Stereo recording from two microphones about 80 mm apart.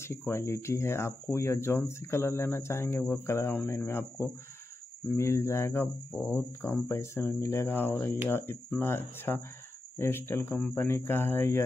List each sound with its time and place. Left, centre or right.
0.3 s speech: left